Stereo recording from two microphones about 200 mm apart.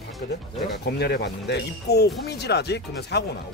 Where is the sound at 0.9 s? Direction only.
55° left (ahead or behind).